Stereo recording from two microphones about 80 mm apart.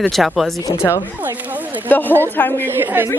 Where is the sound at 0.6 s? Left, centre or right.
Left.